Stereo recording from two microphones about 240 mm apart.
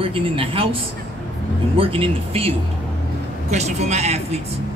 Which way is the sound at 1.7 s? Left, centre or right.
Right.